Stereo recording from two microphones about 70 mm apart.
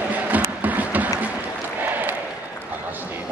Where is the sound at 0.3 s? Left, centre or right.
Right.